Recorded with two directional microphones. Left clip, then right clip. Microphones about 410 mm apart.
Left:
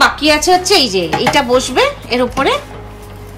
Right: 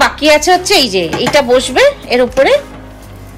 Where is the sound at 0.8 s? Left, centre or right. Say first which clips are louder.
Right 1 dB; centre.